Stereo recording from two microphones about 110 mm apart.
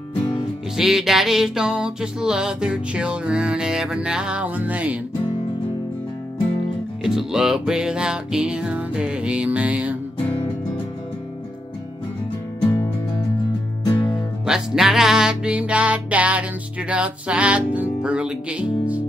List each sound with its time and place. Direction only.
0.2 s music: 40° left (ahead or behind)
0.7 s music: 5° right (ahead or behind)
7.0 s music: 5° right (ahead or behind)
14.4 s music: 5° right (ahead or behind)